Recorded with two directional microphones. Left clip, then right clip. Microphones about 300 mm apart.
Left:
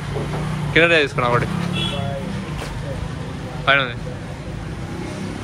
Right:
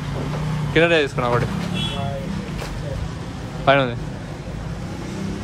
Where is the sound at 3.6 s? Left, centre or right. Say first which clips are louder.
Even; centre.